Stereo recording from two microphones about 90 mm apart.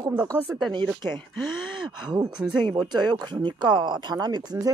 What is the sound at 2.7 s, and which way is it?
Speech, 50° right (ahead or behind).